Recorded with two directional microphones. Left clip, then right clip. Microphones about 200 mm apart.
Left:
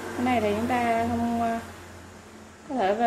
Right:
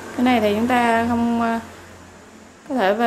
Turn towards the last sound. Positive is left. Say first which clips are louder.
# right 5 dB
turn(degrees=-25)  # may be behind; listen again after turning